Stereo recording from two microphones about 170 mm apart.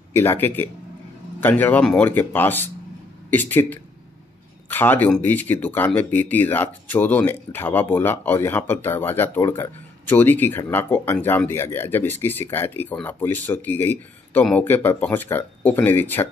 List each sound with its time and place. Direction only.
0.1 s speech: 10° left (ahead or behind)